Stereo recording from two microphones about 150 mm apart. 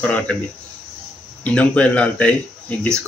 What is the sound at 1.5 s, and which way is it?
Speech, 10° left (ahead or behind).